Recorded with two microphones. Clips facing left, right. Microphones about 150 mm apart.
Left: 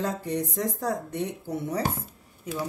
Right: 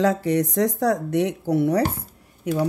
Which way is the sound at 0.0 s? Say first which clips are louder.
Right 9 dB; 90° right.